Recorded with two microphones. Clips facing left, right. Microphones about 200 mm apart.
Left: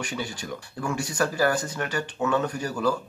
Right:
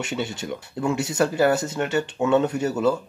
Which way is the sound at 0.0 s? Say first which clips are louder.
Right 4 dB; 25° right (ahead or behind).